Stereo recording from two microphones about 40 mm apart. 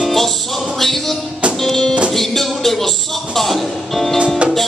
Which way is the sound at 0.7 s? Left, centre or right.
Centre.